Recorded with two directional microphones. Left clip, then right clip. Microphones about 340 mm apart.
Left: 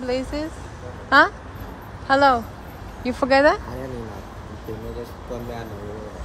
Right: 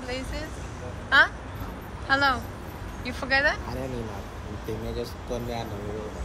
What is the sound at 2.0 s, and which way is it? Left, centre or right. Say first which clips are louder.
Speech: left 7 dB; centre.